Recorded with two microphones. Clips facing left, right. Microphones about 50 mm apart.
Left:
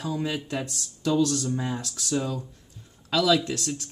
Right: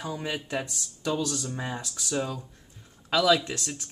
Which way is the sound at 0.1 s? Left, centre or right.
Centre.